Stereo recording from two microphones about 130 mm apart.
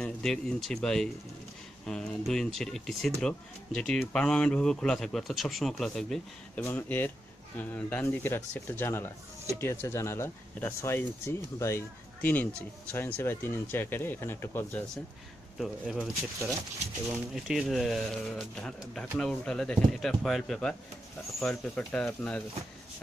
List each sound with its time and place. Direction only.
0.0 s speech: 5° left (ahead or behind)
6.6 s speech: 15° left (ahead or behind)
15.5 s speech: centre (ahead or behind)
17.1 s speech: centre (ahead or behind)